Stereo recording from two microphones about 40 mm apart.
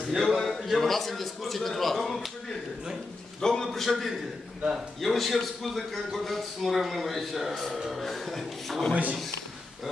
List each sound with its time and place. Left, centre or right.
0.1 s a man's voice: centre
3.3 s a man's voice: centre
3.6 s a man's voice: centre